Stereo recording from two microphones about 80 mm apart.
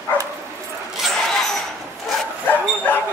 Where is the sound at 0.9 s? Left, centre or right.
Centre.